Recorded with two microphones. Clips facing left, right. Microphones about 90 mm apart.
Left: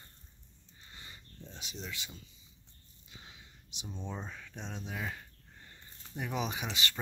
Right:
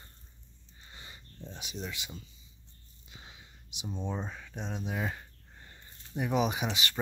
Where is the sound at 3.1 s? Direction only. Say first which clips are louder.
Right 2 dB; 20° right (ahead or behind).